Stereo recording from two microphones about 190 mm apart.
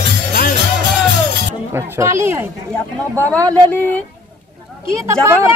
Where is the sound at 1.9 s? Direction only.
15° right (ahead or behind).